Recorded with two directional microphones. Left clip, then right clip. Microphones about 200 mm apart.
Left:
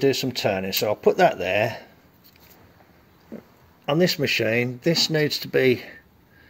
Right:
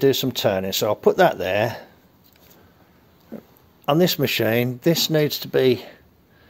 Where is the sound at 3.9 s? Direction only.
20° right (ahead or behind).